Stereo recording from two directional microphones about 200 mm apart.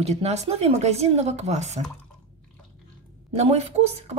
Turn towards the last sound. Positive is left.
turn(degrees=-30)  # may be behind; listen again after turning